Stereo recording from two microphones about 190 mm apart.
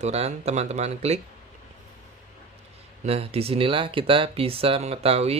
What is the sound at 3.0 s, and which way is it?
Speech, 30° right (ahead or behind).